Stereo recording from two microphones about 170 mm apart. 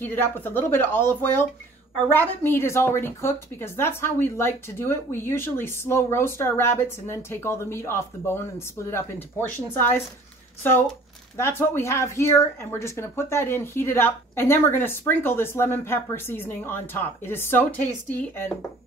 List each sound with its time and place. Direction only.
0.0 s speech: 10° left (ahead or behind)
11.3 s speech: 15° left (ahead or behind)